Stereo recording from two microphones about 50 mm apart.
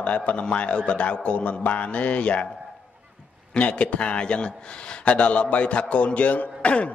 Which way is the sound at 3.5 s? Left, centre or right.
Left.